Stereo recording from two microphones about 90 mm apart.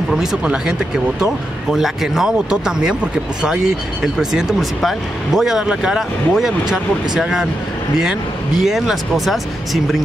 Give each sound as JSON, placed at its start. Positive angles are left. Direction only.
{"t": 0.2, "sound": "speech", "side_deg": -10}